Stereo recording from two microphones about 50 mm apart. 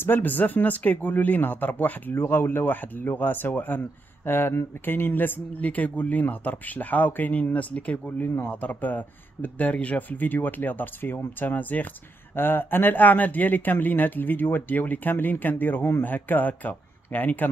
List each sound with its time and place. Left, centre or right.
0.0 s speech: left
2.2 s speech: left
4.3 s speech: left